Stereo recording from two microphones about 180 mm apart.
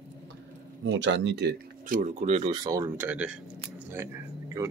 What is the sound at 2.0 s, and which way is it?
Speech, 40° right (ahead or behind).